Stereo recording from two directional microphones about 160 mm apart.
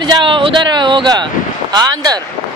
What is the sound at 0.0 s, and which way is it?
Speech, 30° right (ahead or behind).